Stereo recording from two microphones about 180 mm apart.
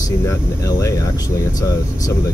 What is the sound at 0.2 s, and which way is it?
Speech, 15° left (ahead or behind).